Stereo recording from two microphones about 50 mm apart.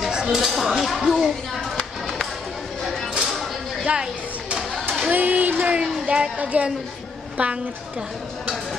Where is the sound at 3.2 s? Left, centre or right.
Centre.